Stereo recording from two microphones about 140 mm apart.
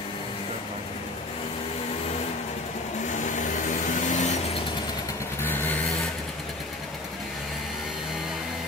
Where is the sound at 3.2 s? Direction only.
60° left (ahead or behind).